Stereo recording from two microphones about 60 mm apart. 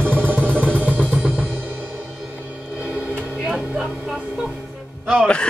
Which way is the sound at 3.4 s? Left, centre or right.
Centre.